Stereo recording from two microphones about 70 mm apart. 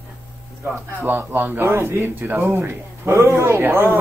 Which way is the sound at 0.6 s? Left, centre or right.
Right.